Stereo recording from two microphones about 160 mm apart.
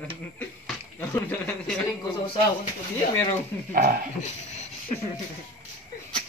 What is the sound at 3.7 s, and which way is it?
Speech, 60° right (ahead or behind).